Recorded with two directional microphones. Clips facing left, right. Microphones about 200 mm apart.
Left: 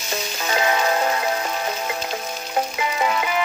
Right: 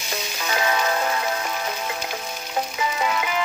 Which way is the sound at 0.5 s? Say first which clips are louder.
Left 2 dB; 35° left (ahead or behind).